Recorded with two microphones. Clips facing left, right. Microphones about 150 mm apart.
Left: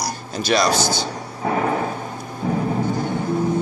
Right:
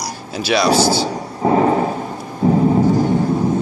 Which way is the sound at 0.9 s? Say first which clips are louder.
Right 6 dB; 30° right (ahead or behind).